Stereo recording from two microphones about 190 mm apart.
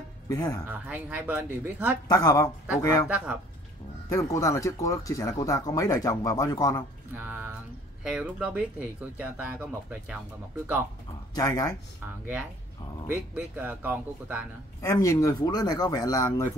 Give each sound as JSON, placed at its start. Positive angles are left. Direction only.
{"t": 0.3, "sound": "speech", "side_deg": 15}
{"t": 0.7, "sound": "speech", "side_deg": -10}
{"t": 2.0, "sound": "speech", "side_deg": 20}
{"t": 4.1, "sound": "speech", "side_deg": 15}
{"t": 7.2, "sound": "speech", "side_deg": -10}
{"t": 11.3, "sound": "speech", "side_deg": 20}
{"t": 13.3, "sound": "speech", "side_deg": -10}
{"t": 14.8, "sound": "speech", "side_deg": 15}